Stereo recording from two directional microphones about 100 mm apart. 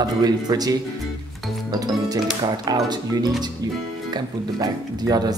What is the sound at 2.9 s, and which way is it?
Speech, 40° right (ahead or behind).